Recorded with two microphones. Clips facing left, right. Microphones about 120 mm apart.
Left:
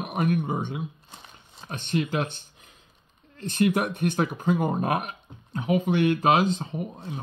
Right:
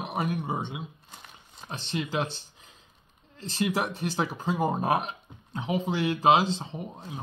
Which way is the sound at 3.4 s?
55° left (ahead or behind).